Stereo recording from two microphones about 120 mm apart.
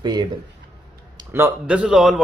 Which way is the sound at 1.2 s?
35° right (ahead or behind).